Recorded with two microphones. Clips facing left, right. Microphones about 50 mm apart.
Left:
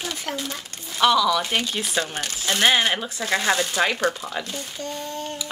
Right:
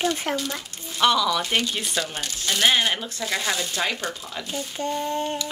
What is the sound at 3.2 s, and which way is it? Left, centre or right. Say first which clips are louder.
Speech: left 7 dB; left.